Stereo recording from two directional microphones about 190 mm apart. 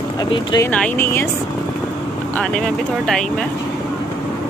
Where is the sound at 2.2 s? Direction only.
5° left (ahead or behind).